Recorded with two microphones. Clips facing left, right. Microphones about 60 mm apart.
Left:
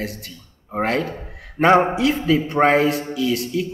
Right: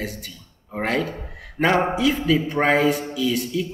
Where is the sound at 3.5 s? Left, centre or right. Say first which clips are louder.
Left 2 dB; left.